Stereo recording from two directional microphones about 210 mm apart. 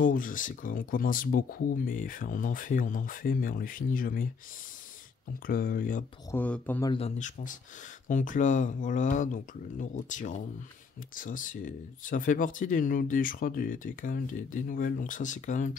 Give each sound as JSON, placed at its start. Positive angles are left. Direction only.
{"t": 0.0, "sound": "speech", "side_deg": 40}
{"t": 5.5, "sound": "speech", "side_deg": 40}
{"t": 6.3, "sound": "speech", "side_deg": 5}
{"t": 6.9, "sound": "speech", "side_deg": 30}